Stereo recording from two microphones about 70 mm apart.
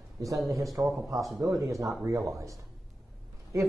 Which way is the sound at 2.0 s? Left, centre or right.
Right.